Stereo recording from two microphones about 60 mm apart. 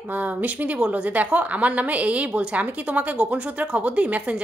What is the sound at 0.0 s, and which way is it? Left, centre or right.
A woman's voice, right.